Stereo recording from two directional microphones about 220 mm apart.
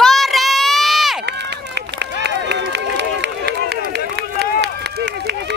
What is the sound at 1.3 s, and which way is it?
Run, 50° right (ahead or behind).